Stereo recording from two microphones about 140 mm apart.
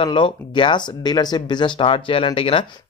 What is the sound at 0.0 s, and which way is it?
Speech, 40° left (ahead or behind).